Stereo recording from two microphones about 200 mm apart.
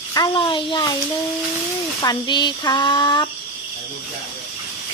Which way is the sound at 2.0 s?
20° left (ahead or behind).